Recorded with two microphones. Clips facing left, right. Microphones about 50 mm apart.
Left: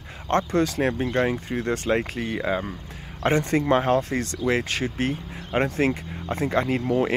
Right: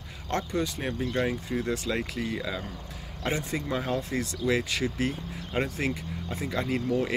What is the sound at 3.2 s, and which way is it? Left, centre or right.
Speech, left.